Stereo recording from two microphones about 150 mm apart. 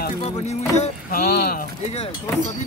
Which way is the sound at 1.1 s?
90° left.